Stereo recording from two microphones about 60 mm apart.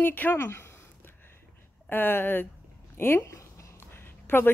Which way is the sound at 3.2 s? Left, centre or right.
Left.